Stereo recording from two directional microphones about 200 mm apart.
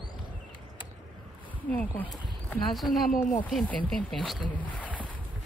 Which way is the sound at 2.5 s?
Centre (ahead or behind).